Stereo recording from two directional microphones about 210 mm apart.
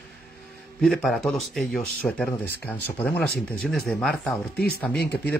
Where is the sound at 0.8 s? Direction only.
Centre (ahead or behind).